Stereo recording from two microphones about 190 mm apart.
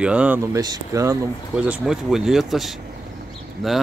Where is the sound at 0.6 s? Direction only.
20° right (ahead or behind); by 2.7 s centre (ahead or behind).